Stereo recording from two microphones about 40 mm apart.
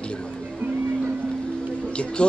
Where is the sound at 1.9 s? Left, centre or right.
Left.